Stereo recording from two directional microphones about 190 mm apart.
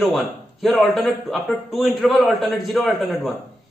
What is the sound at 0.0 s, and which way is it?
A man's voice, centre (ahead or behind).